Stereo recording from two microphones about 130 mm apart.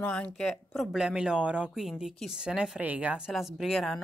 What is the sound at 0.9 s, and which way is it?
A woman's voice, 5° right (ahead or behind).